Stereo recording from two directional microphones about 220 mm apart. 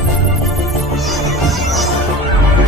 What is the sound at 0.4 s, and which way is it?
Music, centre (ahead or behind).